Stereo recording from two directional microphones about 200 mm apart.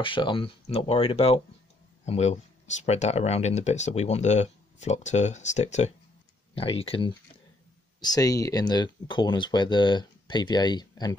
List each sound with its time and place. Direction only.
0.0 s speech: 25° left (ahead or behind)